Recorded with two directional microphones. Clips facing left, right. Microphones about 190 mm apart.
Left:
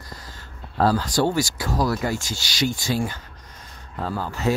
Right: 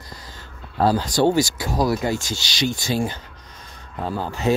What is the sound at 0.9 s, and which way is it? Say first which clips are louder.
Speech: right 6 dB; 20° right (ahead or behind).